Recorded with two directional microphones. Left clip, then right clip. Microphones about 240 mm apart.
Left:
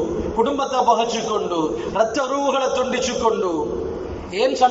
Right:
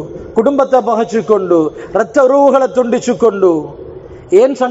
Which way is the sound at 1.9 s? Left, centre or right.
Right.